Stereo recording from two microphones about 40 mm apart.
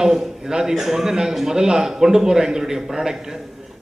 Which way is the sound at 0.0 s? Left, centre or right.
Centre.